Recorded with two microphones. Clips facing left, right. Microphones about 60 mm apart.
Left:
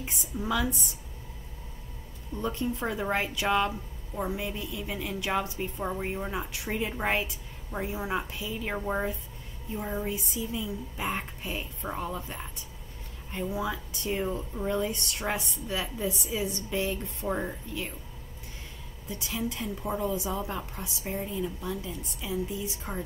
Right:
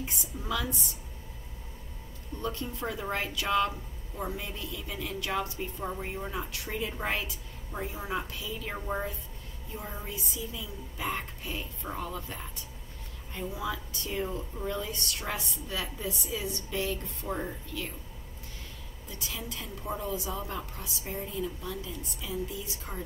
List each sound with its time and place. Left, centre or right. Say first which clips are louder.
0.0 s a woman's voice: left 4 dB; centre
2.4 s a woman's voice: left 4 dB; left
19.1 s a woman's voice: left 6 dB; left